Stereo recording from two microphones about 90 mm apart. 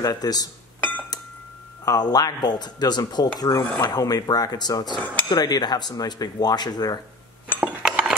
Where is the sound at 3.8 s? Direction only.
45° left (ahead or behind).